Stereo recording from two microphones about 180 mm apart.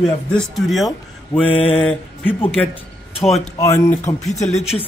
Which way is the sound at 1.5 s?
30° left (ahead or behind).